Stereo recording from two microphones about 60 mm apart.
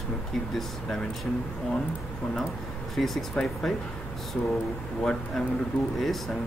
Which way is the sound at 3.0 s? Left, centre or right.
Centre.